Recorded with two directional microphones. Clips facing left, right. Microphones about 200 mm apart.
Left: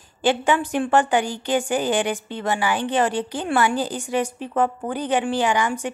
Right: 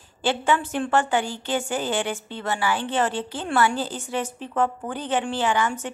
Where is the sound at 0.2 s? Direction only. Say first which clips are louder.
Left 3 dB; 15° left (ahead or behind).